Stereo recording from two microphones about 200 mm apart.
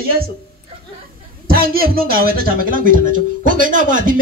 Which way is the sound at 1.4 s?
50° right (ahead or behind).